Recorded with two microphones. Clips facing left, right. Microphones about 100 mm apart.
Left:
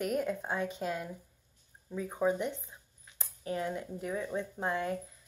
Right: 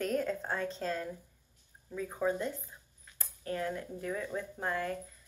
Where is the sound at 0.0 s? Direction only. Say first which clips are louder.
Even; 10° left (ahead or behind).